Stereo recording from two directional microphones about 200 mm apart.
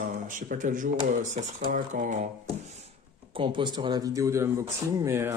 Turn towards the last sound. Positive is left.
turn(degrees=-15)  # may be behind; listen again after turning